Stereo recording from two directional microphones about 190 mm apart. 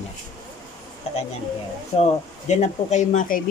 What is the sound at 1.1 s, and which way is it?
Speech, 35° left (ahead or behind).